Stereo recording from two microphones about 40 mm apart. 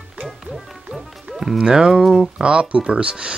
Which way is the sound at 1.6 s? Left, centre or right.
Right.